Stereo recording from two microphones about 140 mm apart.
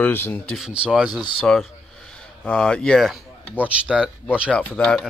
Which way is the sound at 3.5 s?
10° right (ahead or behind).